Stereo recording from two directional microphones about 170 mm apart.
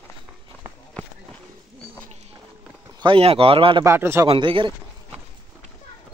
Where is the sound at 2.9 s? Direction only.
30° right (ahead or behind).